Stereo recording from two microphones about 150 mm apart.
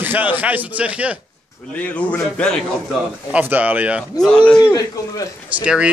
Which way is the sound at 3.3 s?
10° right (ahead or behind).